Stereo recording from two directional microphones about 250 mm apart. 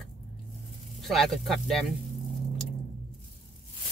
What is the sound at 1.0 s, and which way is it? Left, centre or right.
Speech, centre.